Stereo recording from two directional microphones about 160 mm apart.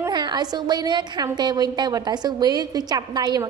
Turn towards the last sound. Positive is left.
turn(degrees=-25)  # may be behind; listen again after turning